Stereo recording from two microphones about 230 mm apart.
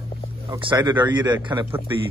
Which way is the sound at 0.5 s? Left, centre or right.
Centre.